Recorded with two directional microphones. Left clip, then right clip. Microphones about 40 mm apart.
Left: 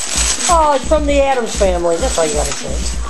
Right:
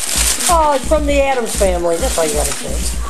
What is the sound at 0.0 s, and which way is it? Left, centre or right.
Speech, centre.